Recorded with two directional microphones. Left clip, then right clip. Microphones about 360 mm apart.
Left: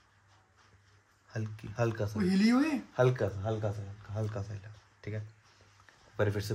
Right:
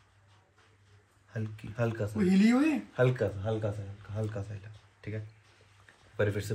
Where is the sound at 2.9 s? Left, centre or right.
Left.